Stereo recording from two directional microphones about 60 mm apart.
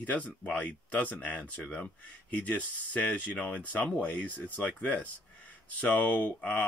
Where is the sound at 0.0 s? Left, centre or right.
Left.